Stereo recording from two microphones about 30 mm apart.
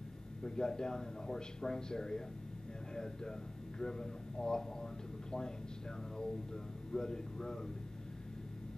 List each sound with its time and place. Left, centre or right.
0.4 s a man's voice: left
6.1 s a man's voice: left